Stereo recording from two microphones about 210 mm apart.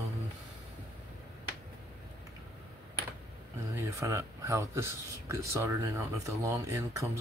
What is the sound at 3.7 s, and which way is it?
Speech, 15° right (ahead or behind).